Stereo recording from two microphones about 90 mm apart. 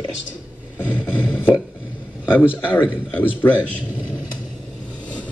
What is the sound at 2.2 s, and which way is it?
A man's voice, 25° left (ahead or behind).